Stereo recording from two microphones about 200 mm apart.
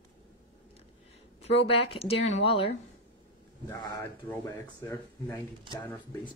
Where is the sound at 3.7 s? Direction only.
20° left (ahead or behind).